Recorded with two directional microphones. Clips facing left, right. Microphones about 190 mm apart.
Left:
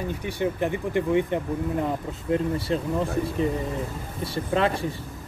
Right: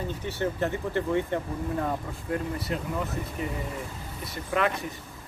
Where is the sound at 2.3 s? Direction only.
30° left (ahead or behind).